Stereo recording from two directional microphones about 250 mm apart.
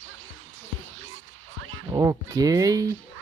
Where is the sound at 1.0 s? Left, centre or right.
Right.